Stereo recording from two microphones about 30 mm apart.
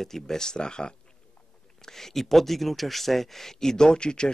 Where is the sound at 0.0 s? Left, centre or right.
Centre.